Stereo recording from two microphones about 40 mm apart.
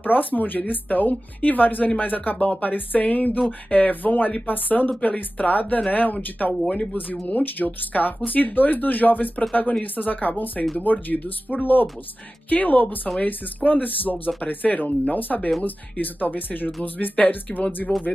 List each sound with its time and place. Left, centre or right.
0.0 s speech: left
7.1 s speech: left